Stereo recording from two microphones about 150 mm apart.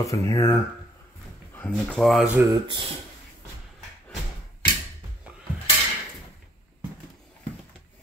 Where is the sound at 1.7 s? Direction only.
Centre (ahead or behind).